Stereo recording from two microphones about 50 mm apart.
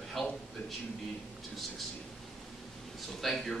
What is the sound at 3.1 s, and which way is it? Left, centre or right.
Speech, centre.